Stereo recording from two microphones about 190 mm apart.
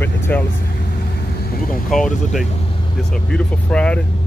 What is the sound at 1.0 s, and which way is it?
Vehicle, 55° left (ahead or behind).